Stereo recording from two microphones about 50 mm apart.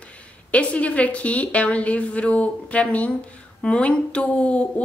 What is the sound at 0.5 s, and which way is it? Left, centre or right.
Speech, left.